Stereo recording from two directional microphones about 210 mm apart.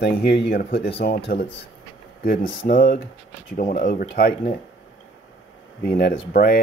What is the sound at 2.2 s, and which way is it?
Speech, 45° left (ahead or behind).